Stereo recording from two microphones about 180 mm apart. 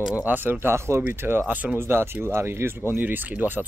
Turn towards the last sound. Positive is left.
turn(degrees=-10)  # may be behind; listen again after turning